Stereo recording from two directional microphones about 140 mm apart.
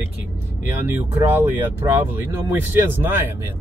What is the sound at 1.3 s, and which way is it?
Speech, 15° right (ahead or behind).